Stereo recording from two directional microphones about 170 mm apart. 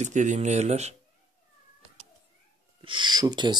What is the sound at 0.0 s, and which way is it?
Speech, 45° right (ahead or behind).